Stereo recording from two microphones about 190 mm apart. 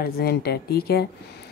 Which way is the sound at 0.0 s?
55° left (ahead or behind).